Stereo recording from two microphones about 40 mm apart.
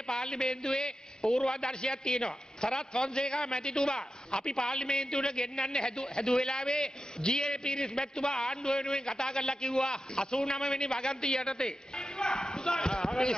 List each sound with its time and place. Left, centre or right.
0.1 s a man's voice: centre
1.2 s a man's voice: centre
1.6 s a man's voice: centre